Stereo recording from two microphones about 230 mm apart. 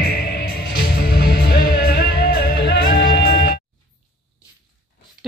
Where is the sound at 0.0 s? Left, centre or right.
Left.